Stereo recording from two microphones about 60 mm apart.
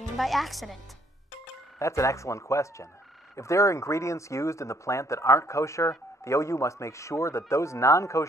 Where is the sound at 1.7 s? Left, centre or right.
Left.